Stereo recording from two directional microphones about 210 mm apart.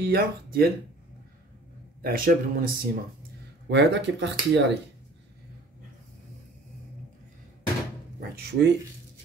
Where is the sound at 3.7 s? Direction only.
55° right (ahead or behind).